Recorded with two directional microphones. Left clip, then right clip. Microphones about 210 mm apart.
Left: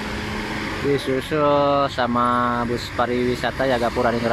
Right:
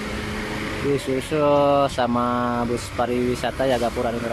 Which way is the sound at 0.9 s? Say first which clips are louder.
Left 1 dB; 5° right (ahead or behind).